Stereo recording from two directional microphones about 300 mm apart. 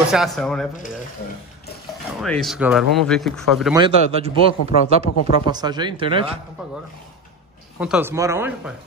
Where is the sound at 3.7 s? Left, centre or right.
Centre.